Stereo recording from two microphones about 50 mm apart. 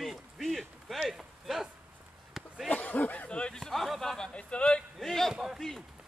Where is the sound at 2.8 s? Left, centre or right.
Left.